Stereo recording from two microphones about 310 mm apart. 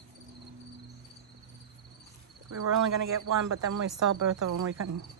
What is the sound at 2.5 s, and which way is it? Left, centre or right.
Speech, right.